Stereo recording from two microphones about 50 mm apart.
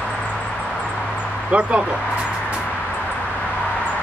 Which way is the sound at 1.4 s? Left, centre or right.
Right.